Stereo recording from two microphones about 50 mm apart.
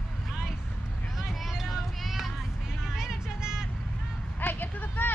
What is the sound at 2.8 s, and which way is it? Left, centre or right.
Vehicle, centre.